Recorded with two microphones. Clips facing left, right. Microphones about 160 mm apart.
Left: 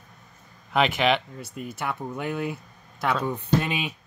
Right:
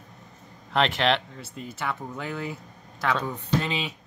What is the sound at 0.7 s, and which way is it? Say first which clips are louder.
Speech: left 1 dB; 5° left (ahead or behind).